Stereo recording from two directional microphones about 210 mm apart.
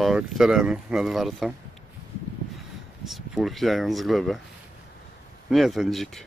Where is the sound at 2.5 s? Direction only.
Centre (ahead or behind).